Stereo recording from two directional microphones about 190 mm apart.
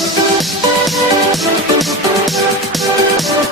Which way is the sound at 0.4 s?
Centre (ahead or behind).